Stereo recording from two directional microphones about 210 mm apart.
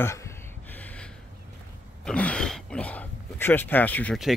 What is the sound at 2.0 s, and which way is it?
Speech, 5° left (ahead or behind).